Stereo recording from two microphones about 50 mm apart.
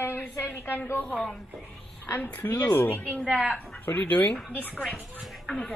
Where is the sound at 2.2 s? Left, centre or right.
Left.